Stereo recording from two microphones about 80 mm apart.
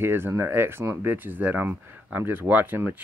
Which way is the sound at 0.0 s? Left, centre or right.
Right.